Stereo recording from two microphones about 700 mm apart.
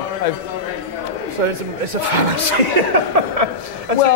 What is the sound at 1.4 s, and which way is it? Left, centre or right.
Speech, right.